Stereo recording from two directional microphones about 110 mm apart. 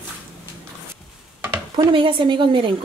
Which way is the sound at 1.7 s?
50° right (ahead or behind).